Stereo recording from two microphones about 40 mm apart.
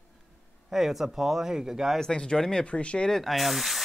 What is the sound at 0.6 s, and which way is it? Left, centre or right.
Speech, centre.